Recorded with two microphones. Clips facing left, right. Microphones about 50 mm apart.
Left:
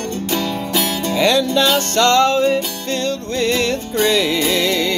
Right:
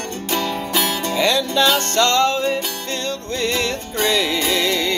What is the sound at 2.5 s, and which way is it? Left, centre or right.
Music, centre.